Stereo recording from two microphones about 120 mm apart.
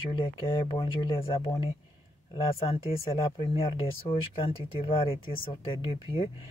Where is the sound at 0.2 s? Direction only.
45° left (ahead or behind).